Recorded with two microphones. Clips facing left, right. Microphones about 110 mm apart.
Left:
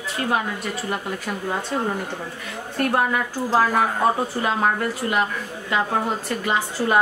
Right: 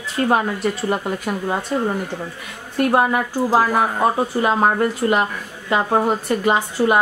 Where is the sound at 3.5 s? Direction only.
15° right (ahead or behind).